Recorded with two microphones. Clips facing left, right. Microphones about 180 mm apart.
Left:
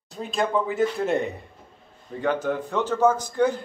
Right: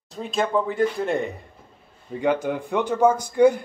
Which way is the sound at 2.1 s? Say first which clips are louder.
Right 2 dB; 10° right (ahead or behind).